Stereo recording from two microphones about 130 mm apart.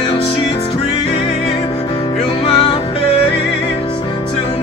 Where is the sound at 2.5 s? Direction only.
45° left (ahead or behind).